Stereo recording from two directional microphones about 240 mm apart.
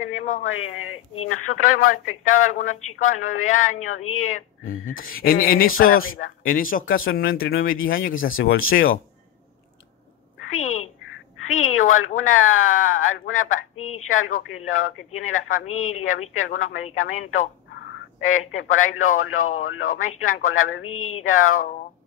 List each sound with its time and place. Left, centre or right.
0.4 s speech: left
5.0 s speech: left
8.1 s speech: left
10.5 s quack: left
11.4 s speech: left